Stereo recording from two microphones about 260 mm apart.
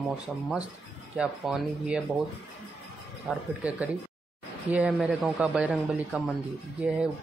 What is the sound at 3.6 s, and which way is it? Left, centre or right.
Speech, centre.